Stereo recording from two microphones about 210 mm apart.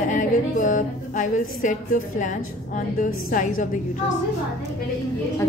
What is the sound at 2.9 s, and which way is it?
Speech, 40° left (ahead or behind).